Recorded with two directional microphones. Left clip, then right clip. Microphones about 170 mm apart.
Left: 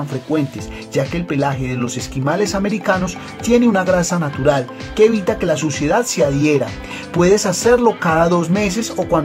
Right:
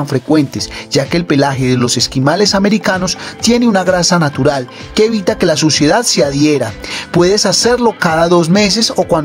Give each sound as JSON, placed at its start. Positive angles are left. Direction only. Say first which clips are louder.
{"t": 0.3, "sound": "speech", "louder": "right 6 dB", "side_deg": -35}